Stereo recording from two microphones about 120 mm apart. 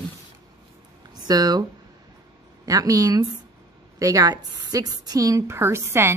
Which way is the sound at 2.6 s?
30° right (ahead or behind).